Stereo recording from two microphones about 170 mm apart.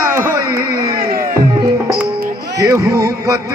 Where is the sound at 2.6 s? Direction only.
20° right (ahead or behind).